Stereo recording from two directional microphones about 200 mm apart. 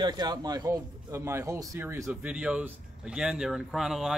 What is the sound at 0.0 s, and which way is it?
Speech, 20° right (ahead or behind).